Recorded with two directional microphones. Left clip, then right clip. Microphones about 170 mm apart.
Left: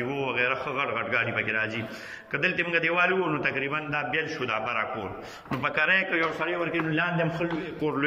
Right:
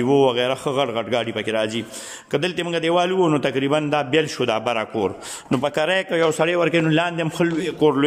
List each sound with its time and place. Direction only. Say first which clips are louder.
0.0 s a man's voice: right 10 dB; 45° right (ahead or behind)